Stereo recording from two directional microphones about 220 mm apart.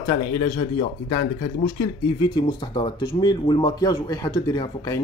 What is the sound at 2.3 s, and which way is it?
Speech, 20° left (ahead or behind).